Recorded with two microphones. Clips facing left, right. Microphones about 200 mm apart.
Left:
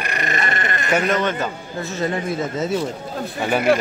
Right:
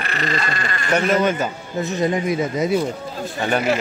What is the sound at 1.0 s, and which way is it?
Speech, 10° right (ahead or behind).